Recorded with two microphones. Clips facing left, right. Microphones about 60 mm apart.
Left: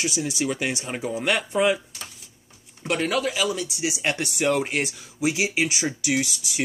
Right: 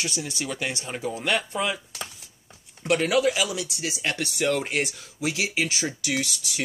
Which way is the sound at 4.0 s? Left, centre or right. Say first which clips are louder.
Left 1 dB; left.